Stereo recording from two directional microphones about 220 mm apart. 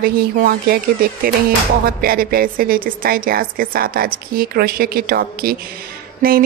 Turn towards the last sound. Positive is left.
turn(degrees=-40)  # may be behind; listen again after turning